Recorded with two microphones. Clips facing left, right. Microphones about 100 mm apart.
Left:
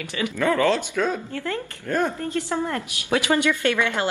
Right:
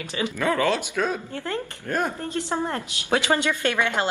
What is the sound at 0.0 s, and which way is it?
A woman's voice, 20° right (ahead or behind).